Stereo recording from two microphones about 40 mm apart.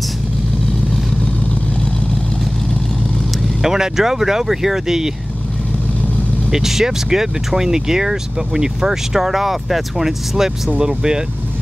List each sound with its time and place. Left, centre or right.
3.6 s speech: centre
6.5 s speech: centre